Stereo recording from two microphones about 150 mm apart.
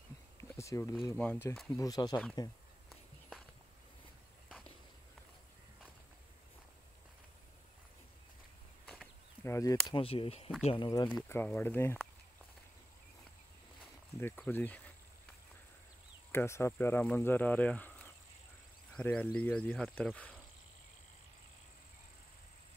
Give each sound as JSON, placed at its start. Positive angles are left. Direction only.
{"t": 0.6, "sound": "speech", "side_deg": 20}
{"t": 1.1, "sound": "speech", "side_deg": 10}
{"t": 1.8, "sound": "speech", "side_deg": 25}
{"t": 2.9, "sound": "walk", "side_deg": 0}
{"t": 8.8, "sound": "a sound", "side_deg": 5}
{"t": 9.4, "sound": "speech", "side_deg": 20}
{"t": 9.8, "sound": "speech", "side_deg": 35}
{"t": 11.2, "sound": "speech", "side_deg": 15}
{"t": 14.5, "sound": "speech", "side_deg": 10}
{"t": 16.3, "sound": "speech", "side_deg": 15}